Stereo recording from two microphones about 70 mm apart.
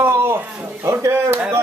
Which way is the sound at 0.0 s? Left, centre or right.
Right.